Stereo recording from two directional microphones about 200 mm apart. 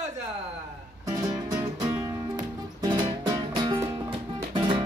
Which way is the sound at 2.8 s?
20° right (ahead or behind).